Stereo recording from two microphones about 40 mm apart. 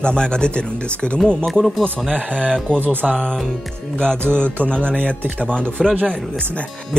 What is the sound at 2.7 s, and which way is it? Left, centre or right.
Speech, right.